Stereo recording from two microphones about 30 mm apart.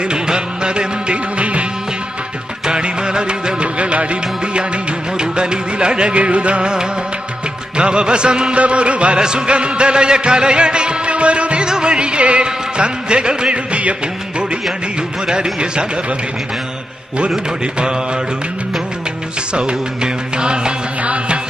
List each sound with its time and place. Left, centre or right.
0.1 s music: right
2.6 s music: right
7.7 s music: right
8.5 s a sound: right
9.5 s music: right
11.6 s music: right
15.2 s speech: right
19.5 s music: right
21.0 s music: right